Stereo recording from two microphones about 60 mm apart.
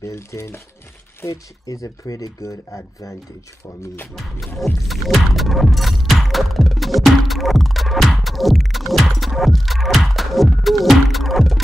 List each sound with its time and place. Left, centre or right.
0.0 s speech: left
1.2 s speech: left
4.6 s music: centre